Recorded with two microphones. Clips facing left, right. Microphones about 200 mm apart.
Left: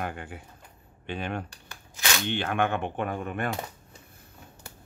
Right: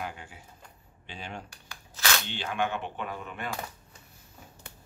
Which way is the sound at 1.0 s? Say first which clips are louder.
Left 8 dB; 60° left (ahead or behind).